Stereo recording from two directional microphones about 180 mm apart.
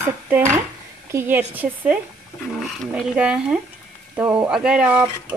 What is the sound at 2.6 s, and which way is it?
Speech, centre (ahead or behind).